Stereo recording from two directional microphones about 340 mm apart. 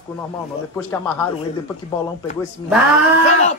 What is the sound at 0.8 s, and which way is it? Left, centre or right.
Speech, centre.